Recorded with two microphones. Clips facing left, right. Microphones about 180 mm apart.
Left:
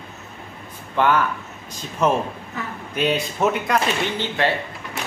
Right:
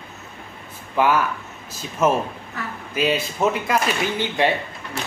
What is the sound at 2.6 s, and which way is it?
Speech, 20° left (ahead or behind).